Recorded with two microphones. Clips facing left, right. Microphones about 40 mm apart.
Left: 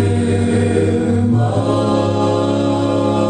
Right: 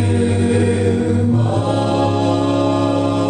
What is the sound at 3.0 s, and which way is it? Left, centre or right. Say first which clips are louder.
Music: left 2 dB; left.